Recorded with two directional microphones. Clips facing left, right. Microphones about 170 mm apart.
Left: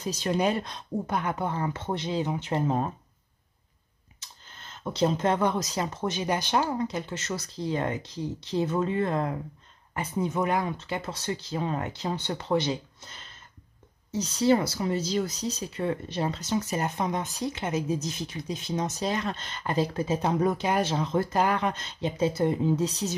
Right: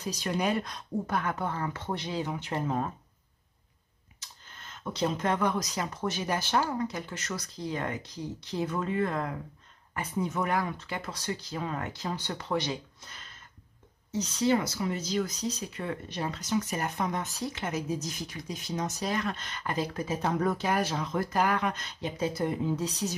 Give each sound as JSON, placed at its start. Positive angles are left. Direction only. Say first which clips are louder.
{"t": 0.0, "sound": "speech", "louder": "left 4 dB", "side_deg": 25}
{"t": 4.5, "sound": "speech", "louder": "left 3 dB", "side_deg": 30}